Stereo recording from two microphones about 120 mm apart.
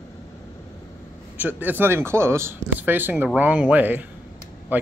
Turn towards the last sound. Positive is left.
turn(degrees=-15)  # may be behind; listen again after turning